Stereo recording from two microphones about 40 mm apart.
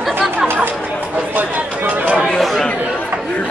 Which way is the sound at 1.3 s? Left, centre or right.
Right.